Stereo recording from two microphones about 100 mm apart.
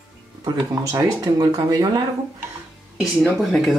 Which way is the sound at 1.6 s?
40° right (ahead or behind).